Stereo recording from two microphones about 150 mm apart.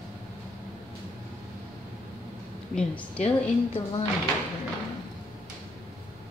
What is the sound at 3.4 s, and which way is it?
Speech, 40° left (ahead or behind).